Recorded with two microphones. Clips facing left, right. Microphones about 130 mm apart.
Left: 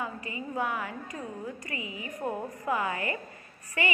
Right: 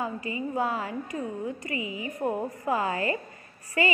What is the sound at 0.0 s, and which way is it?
A woman's voice, 25° right (ahead or behind).